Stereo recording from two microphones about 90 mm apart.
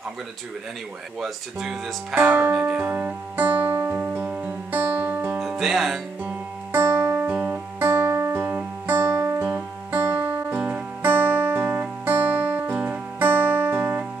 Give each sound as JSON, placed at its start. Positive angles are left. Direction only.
{"t": 1.2, "sound": "speech", "side_deg": -5}
{"t": 2.1, "sound": "speech", "side_deg": -20}
{"t": 2.7, "sound": "music", "side_deg": -15}
{"t": 5.4, "sound": "music", "side_deg": -5}
{"t": 6.2, "sound": "music", "side_deg": -20}